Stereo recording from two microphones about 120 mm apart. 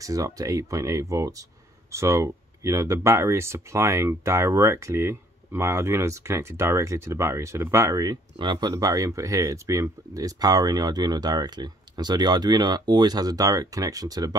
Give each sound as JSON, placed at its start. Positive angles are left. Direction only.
{"t": 0.0, "sound": "speech", "side_deg": -30}